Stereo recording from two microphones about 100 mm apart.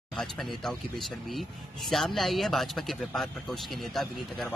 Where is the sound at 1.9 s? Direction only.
Centre (ahead or behind).